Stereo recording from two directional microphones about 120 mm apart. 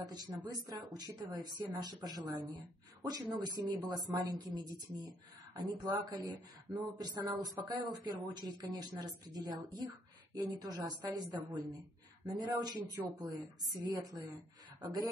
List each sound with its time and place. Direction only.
0.1 s speech: 35° right (ahead or behind)